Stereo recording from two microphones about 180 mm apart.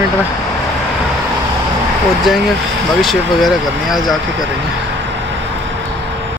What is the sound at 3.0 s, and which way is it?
Speech, centre (ahead or behind).